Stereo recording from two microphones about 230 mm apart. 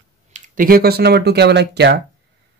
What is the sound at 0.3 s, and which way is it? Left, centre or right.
Speech, right.